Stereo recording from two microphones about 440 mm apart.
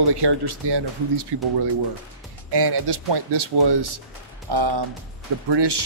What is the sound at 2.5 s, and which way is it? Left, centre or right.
Speech, right.